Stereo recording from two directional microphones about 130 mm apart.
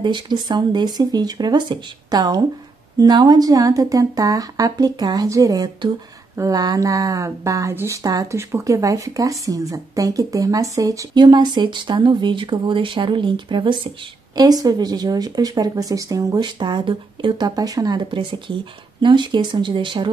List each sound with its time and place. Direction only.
0.0 s speech: 35° right (ahead or behind)